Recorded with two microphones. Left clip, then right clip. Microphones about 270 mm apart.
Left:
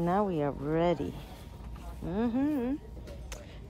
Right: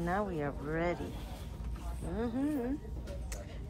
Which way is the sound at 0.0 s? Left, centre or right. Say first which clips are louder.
Left 6 dB; centre.